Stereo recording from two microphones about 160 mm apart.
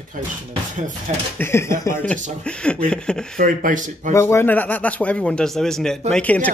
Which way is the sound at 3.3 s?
60° right (ahead or behind).